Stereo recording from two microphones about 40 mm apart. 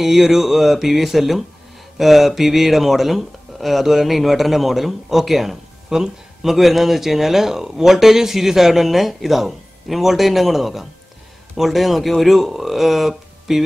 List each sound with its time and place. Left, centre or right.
0.0 s speech: centre